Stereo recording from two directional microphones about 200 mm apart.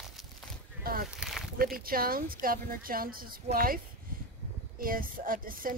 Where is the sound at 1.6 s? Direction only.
45° right (ahead or behind).